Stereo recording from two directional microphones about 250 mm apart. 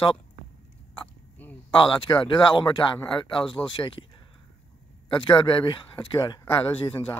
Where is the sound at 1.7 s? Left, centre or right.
Centre.